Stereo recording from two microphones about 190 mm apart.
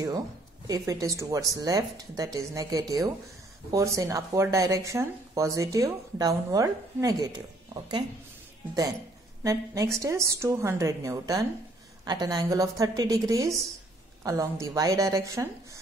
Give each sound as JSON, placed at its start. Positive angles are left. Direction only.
{"t": 0.7, "sound": "speech", "side_deg": -20}
{"t": 9.4, "sound": "a woman's voice", "side_deg": -15}